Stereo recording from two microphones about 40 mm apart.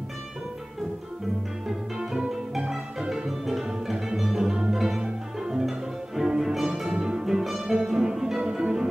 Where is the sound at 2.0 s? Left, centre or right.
Centre.